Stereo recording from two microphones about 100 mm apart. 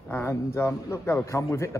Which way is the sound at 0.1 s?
25° left (ahead or behind).